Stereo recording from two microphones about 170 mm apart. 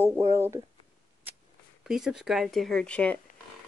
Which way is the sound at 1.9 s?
5° right (ahead or behind).